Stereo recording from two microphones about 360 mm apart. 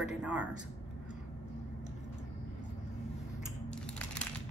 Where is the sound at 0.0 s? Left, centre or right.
Centre.